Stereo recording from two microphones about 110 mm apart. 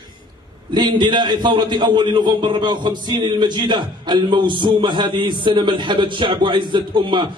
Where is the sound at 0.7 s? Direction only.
40° right (ahead or behind).